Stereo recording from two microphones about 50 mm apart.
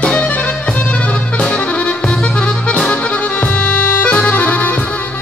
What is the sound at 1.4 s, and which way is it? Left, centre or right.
Accordion, left.